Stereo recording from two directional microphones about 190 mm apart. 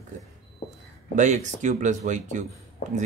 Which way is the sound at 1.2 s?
40° right (ahead or behind).